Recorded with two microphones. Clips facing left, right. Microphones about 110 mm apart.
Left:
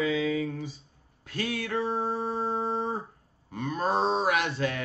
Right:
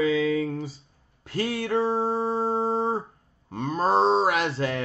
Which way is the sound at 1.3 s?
35° right (ahead or behind).